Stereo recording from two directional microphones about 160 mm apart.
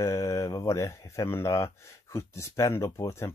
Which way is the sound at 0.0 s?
20° left (ahead or behind).